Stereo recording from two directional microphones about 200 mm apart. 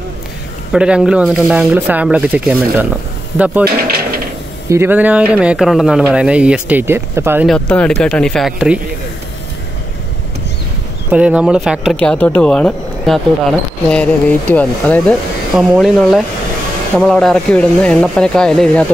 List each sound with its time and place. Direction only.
0.7 s speech: 5° right (ahead or behind)
3.6 s speech: 50° right (ahead or behind)
4.6 s speech: 10° right (ahead or behind)
7.4 s speech: 5° left (ahead or behind)
11.1 s speech: 5° right (ahead or behind)